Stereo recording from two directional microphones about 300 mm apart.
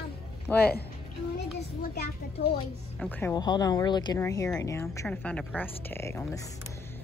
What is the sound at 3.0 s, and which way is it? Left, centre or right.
Speech, centre.